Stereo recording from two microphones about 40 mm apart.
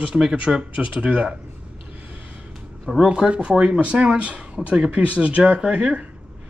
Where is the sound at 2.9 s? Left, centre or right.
Centre.